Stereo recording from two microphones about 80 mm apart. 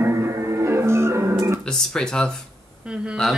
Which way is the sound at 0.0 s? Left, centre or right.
Right.